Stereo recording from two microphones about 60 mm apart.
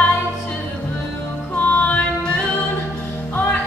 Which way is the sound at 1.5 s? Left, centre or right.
Left.